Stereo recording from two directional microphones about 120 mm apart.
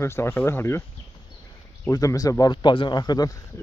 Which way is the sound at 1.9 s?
30° left (ahead or behind).